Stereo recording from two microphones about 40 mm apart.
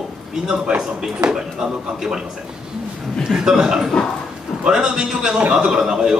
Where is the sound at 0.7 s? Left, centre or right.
Right.